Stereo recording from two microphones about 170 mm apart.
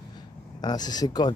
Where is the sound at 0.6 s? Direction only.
25° left (ahead or behind).